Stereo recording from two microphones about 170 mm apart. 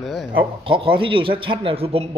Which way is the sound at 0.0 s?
Centre (ahead or behind).